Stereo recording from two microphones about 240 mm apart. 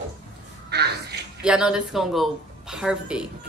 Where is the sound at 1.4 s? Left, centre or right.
Centre.